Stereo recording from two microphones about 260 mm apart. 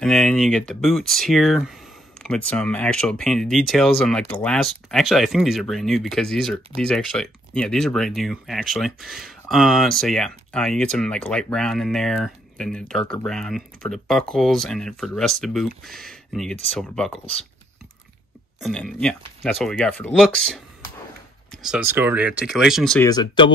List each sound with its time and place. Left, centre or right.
0.0 s speech: centre
18.6 s speech: centre
23.0 s speech: centre